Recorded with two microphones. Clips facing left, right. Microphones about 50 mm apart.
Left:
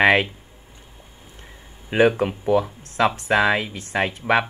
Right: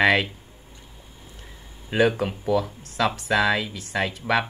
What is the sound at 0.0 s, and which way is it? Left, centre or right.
Speech, left.